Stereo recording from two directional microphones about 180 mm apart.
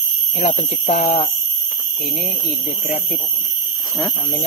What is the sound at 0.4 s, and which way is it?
Speech, 40° left (ahead or behind).